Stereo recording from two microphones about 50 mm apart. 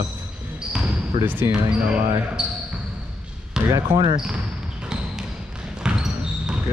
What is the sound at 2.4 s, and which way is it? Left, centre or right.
Speech, centre.